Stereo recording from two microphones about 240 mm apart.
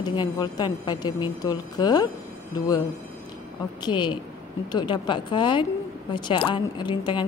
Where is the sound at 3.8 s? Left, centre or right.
Centre.